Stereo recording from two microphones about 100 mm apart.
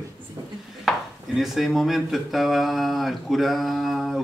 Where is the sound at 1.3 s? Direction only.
Centre (ahead or behind).